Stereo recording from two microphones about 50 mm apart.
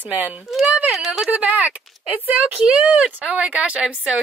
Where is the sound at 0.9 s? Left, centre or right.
Centre.